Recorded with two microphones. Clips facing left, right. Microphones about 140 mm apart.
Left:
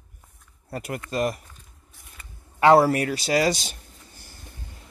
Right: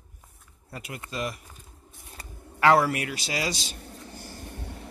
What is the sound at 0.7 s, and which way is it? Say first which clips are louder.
Speech: left 7 dB; 45° left (ahead or behind).